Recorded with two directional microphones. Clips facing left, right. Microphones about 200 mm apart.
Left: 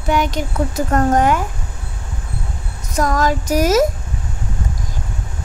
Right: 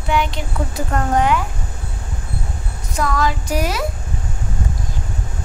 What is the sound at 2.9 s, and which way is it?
Speech, 45° left (ahead or behind).